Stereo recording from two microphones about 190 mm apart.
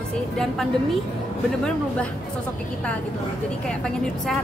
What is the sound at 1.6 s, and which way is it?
Speech, 5° left (ahead or behind).